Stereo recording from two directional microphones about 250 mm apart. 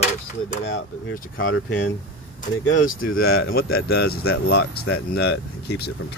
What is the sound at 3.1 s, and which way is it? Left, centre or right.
Speech, left.